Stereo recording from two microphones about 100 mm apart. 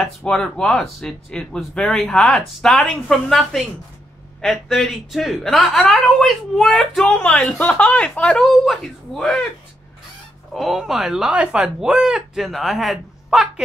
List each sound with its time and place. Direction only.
0.2 s speech: 10° left (ahead or behind)
10.5 s speech: centre (ahead or behind)